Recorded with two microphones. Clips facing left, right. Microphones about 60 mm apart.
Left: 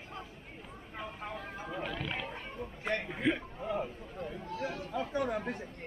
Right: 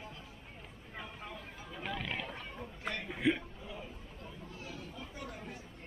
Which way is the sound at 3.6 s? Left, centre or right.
Left.